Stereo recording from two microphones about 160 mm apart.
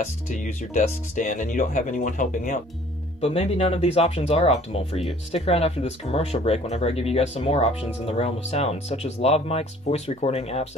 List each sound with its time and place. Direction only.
0.3 s speech: 50° left (ahead or behind)
3.2 s speech: 40° left (ahead or behind)